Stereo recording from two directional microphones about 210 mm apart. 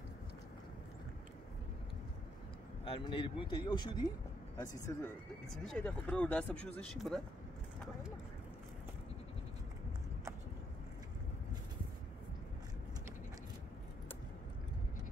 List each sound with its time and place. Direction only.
2.8 s speech: 25° left (ahead or behind)
5.5 s speech: 5° left (ahead or behind)